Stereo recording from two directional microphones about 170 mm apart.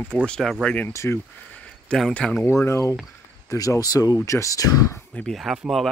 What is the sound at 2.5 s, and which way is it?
Speech, 15° left (ahead or behind).